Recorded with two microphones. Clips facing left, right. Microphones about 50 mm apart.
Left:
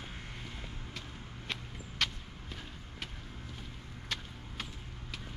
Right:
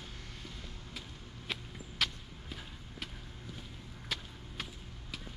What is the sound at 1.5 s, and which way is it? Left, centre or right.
Walk, centre.